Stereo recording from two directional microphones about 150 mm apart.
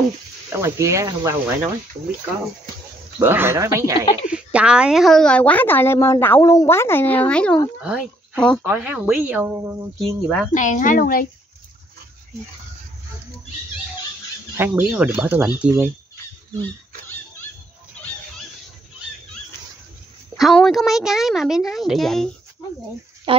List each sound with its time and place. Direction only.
0.5 s speech: 20° right (ahead or behind)
3.2 s speech: 15° right (ahead or behind)
4.0 s speech: 40° left (ahead or behind)
4.3 s a woman's voice: 5° right (ahead or behind)
7.8 s speech: 5° right (ahead or behind)
10.0 s a woman's voice: centre (ahead or behind)
10.5 s a woman's voice: 60° left (ahead or behind)
14.6 s speech: 10° right (ahead or behind)
20.3 s a woman's voice: centre (ahead or behind)
23.3 s speech: 35° right (ahead or behind)